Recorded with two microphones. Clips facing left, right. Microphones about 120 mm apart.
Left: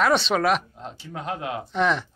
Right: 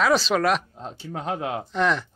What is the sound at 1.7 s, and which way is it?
Speech, centre (ahead or behind).